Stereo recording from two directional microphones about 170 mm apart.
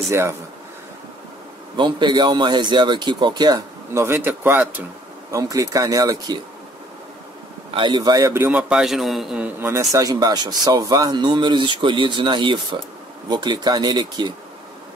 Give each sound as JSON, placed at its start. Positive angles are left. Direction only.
{"t": 0.1, "sound": "speech", "side_deg": -15}
{"t": 1.8, "sound": "a man's voice", "side_deg": -25}
{"t": 7.7, "sound": "a man's voice", "side_deg": -25}